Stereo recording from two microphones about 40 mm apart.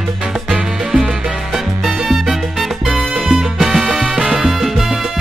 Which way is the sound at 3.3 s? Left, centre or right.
Centre.